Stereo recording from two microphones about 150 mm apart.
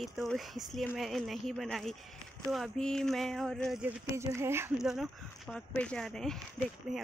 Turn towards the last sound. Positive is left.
turn(degrees=-5)  # may be behind; listen again after turning